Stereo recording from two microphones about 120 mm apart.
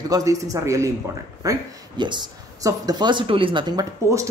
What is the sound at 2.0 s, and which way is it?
A woman's voice, 40° right (ahead or behind).